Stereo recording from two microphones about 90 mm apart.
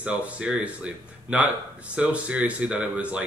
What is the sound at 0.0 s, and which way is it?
Speech, 15° right (ahead or behind).